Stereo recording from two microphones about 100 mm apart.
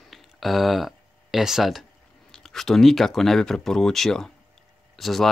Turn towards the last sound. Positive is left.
turn(degrees=0)  # may be behind; listen again after turning